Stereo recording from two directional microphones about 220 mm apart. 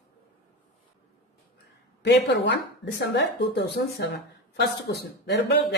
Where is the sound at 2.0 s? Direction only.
50° left (ahead or behind).